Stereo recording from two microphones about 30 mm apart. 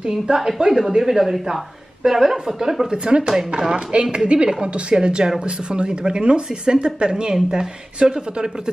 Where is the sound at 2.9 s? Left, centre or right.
Right.